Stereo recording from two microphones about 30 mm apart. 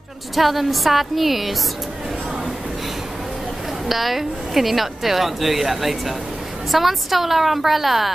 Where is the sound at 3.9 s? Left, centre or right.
Centre.